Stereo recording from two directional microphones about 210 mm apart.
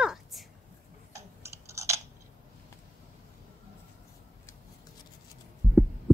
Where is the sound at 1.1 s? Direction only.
15° right (ahead or behind).